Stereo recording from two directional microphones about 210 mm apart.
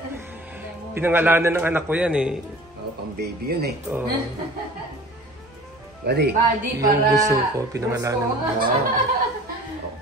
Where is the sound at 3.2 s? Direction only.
50° right (ahead or behind).